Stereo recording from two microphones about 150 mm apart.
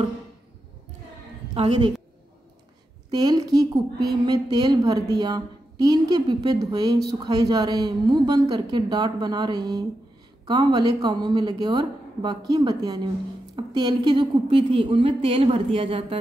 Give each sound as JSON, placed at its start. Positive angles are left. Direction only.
{"t": 1.5, "sound": "a woman's voice", "side_deg": -35}
{"t": 3.1, "sound": "a woman's voice", "side_deg": -25}